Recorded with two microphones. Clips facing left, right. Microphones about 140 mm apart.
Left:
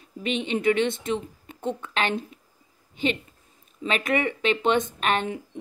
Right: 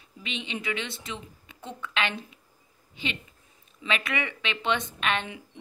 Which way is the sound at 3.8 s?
45° left (ahead or behind).